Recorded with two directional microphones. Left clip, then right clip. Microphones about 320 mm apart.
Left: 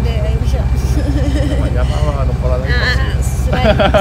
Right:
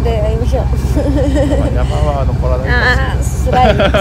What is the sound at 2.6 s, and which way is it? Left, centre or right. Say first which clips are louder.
Speech: right 6 dB; right.